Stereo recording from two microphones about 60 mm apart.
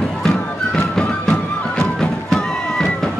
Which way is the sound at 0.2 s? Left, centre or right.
Centre.